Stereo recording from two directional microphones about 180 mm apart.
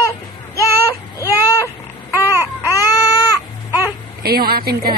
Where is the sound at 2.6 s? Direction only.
20° left (ahead or behind).